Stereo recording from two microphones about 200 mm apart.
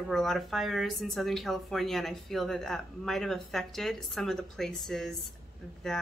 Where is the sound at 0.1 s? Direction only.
Centre (ahead or behind).